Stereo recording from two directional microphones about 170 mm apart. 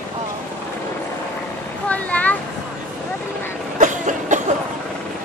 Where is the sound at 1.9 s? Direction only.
10° left (ahead or behind).